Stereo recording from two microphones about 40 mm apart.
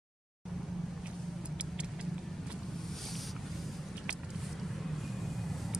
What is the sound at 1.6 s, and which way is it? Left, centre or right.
Vehicle, right.